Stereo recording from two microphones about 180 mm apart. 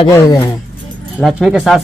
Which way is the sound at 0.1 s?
15° left (ahead or behind).